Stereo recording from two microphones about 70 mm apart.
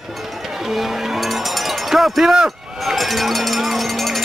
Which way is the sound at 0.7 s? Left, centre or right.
Centre.